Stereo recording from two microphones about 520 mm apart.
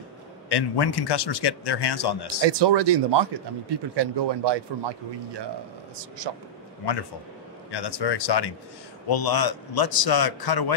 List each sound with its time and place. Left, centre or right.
0.5 s a man's voice: left
2.4 s speech: right
6.8 s a man's voice: left